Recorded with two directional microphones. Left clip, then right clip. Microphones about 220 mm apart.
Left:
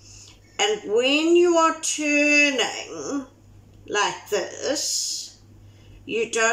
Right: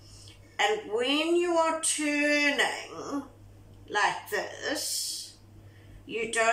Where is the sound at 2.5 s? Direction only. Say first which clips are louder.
Left 3 dB; 15° left (ahead or behind).